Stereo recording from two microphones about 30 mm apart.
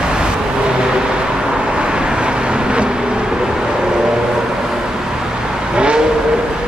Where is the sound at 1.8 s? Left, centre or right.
Right.